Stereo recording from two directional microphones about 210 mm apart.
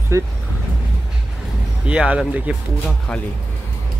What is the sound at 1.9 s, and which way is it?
Speech, 5° right (ahead or behind).